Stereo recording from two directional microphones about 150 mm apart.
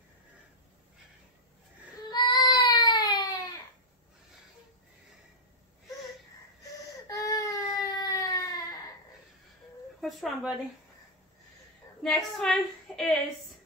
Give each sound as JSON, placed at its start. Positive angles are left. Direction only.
{"t": 2.0, "sound": "baby cry", "side_deg": 30}
{"t": 7.1, "sound": "baby cry", "side_deg": 20}
{"t": 7.7, "sound": "a sound", "side_deg": 25}
{"t": 10.0, "sound": "speech", "side_deg": 0}
{"t": 12.0, "sound": "a woman's voice", "side_deg": 0}